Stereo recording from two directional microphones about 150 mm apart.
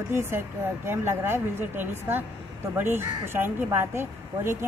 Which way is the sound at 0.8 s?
15° right (ahead or behind).